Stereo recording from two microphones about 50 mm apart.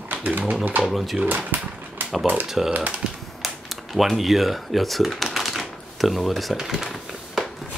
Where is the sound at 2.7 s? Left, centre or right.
Right.